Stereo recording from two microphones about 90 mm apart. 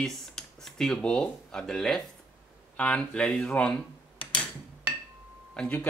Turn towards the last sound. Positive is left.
turn(degrees=15)  # may be behind; listen again after turning